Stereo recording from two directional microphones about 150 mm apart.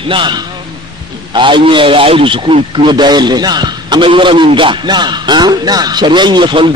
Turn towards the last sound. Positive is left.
turn(degrees=-30)  # may be behind; listen again after turning